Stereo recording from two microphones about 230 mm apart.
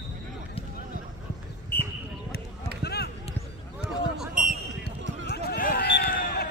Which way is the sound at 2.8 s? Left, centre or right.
Left.